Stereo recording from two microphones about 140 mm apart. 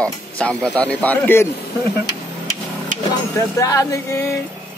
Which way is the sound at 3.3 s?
25° left (ahead or behind).